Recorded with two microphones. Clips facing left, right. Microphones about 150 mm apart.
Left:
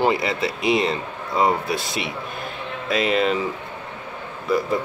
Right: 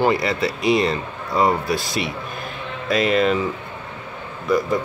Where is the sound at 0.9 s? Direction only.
20° left (ahead or behind).